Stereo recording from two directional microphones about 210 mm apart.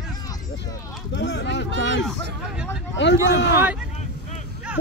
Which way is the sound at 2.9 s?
55° left (ahead or behind).